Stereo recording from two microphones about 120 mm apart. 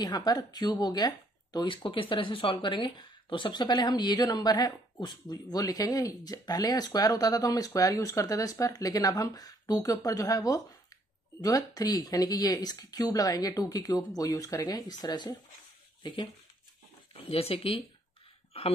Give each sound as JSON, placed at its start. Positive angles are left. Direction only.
{"t": 0.0, "sound": "speech", "side_deg": 35}
{"t": 17.1, "sound": "speech", "side_deg": 55}